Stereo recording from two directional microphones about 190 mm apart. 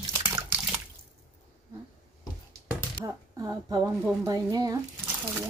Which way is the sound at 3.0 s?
20° right (ahead or behind).